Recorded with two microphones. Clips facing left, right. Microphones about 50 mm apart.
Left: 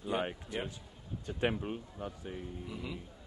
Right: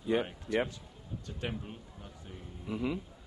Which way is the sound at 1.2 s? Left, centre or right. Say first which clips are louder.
Left 7 dB; left.